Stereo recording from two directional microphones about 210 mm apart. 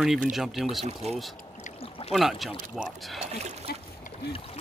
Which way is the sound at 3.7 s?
50° left (ahead or behind).